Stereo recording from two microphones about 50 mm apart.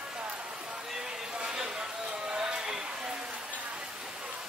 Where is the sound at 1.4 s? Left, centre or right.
Centre.